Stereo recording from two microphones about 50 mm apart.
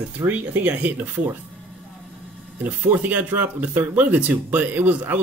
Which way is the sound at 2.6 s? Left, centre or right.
Right.